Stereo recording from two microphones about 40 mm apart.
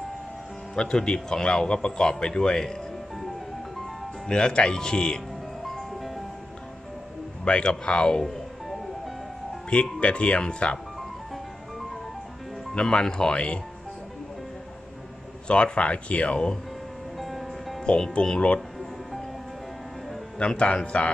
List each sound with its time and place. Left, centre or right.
0.7 s a man's voice: centre
3.2 s music: centre
4.3 s a man's voice: left
5.6 s music: centre
7.4 s a man's voice: left
8.2 s music: centre
9.7 s a man's voice: left
12.7 s a man's voice: left
15.4 s a man's voice: left
17.2 s music: centre
17.8 s a man's voice: left
20.3 s a man's voice: left